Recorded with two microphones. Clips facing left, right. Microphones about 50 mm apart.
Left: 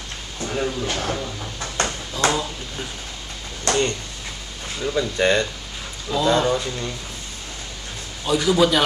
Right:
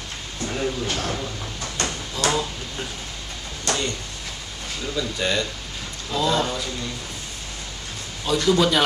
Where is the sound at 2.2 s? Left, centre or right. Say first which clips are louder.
Left 1 dB; centre.